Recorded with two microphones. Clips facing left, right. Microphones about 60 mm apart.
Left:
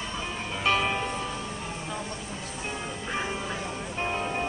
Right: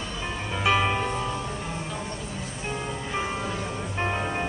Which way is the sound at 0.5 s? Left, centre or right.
Centre.